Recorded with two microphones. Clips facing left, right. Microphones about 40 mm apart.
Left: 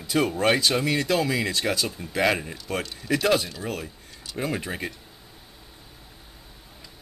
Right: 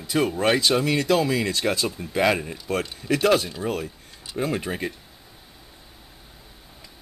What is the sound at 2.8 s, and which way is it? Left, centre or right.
Speech, centre.